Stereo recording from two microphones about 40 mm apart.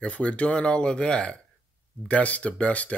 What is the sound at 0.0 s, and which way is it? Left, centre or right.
Speech, left.